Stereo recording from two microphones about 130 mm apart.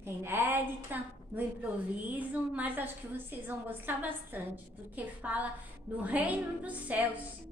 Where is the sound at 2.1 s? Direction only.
10° right (ahead or behind).